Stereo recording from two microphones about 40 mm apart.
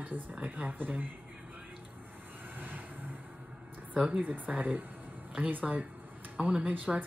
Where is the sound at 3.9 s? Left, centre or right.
Right.